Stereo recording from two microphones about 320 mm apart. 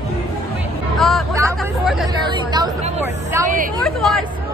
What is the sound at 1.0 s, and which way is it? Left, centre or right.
Speech, centre.